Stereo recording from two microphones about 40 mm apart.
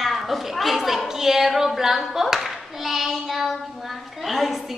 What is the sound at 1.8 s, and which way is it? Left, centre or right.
Clapping, centre.